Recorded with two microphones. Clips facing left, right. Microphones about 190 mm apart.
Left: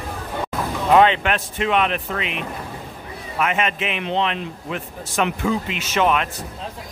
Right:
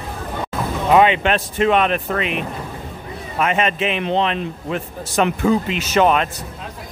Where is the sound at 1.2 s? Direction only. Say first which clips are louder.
Right 5 dB; 35° right (ahead or behind).